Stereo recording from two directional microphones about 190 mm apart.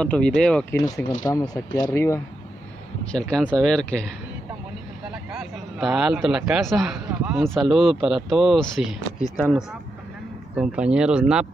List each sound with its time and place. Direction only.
0.0 s speech: 5° left (ahead or behind)
0.8 s speech: 20° left (ahead or behind)
3.1 s speech: 5° left (ahead or behind)
5.1 s a man's voice: 5° right (ahead or behind)